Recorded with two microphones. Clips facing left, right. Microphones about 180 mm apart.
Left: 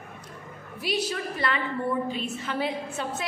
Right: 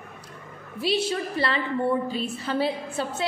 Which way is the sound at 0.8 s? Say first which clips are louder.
Right 4 dB; 30° right (ahead or behind).